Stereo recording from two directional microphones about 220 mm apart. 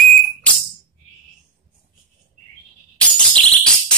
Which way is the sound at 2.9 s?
5° left (ahead or behind).